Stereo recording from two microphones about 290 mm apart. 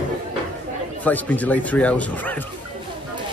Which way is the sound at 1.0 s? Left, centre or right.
Centre.